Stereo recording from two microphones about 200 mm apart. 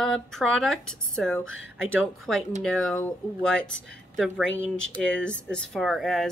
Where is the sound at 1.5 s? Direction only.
75° left (ahead or behind).